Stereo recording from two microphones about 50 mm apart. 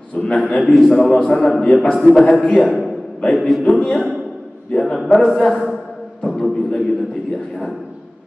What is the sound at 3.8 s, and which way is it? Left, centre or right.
A man's voice, centre.